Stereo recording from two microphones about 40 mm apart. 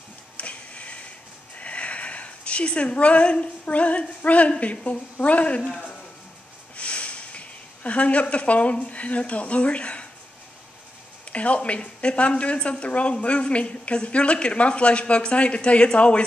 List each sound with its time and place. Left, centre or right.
0.4 s printer: left
1.6 s a woman's voice: left
5.6 s a woman's voice: centre
6.8 s speech: left
11.3 s a woman's voice: left